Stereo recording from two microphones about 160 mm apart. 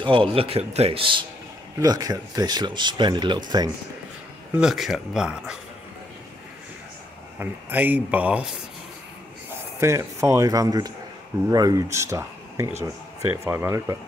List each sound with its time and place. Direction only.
0.0 s a man's voice: 35° right (ahead or behind)
1.8 s speech: 25° right (ahead or behind)
4.6 s speech: centre (ahead or behind)
7.3 s speech: 10° right (ahead or behind)
9.8 s speech: 15° right (ahead or behind)